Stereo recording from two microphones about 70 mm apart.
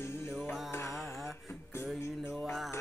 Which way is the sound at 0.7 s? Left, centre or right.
Left.